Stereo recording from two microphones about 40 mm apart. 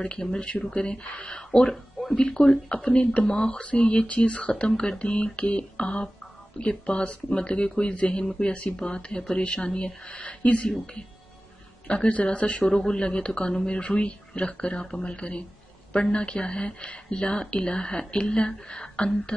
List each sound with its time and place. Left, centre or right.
0.0 s speech: left
12.1 s speech: left
18.7 s a sound: left